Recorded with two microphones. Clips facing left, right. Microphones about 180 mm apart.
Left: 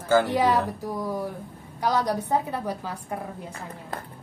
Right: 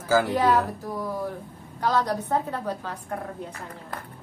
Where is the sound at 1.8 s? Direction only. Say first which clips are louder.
Even; 10° left (ahead or behind).